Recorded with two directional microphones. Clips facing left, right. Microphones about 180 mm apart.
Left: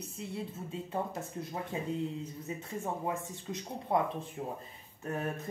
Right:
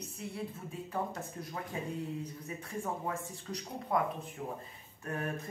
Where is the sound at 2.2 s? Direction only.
25° left (ahead or behind).